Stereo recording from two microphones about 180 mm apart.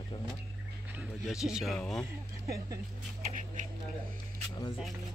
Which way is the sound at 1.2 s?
Centre (ahead or behind).